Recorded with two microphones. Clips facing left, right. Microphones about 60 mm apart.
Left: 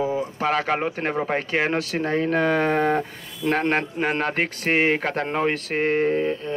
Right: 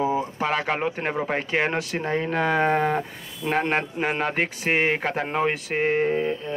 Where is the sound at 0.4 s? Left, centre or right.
Centre.